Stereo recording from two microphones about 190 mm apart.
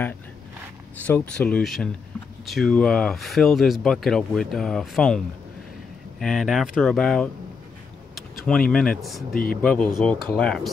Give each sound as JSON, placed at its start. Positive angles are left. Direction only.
{"t": 1.0, "sound": "speech", "side_deg": 5}
{"t": 8.5, "sound": "speech", "side_deg": 5}
{"t": 9.3, "sound": "speech", "side_deg": 50}
{"t": 9.6, "sound": "speech", "side_deg": 5}